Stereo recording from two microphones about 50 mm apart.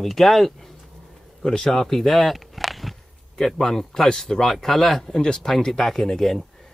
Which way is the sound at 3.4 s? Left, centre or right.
Centre.